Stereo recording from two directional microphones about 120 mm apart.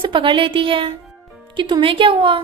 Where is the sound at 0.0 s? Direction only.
45° right (ahead or behind).